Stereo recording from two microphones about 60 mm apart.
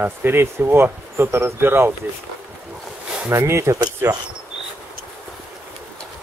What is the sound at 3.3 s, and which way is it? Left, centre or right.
Speech, right.